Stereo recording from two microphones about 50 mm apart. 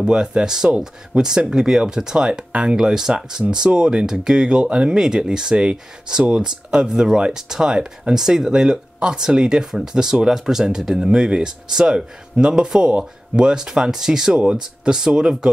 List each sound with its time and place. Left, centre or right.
0.0 s speech: centre
11.1 s speech: centre